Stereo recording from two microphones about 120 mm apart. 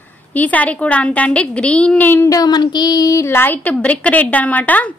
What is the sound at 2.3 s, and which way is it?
A woman's voice, 35° left (ahead or behind).